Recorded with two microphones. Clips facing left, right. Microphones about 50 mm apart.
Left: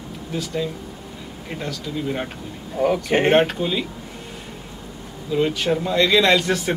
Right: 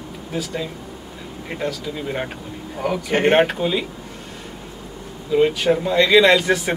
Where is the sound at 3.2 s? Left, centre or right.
Centre.